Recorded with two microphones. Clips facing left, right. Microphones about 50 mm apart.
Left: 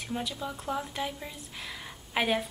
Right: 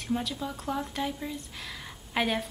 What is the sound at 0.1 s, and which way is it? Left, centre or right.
Speech, centre.